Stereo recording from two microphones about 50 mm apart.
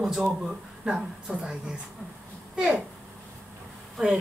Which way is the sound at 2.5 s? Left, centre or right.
Centre.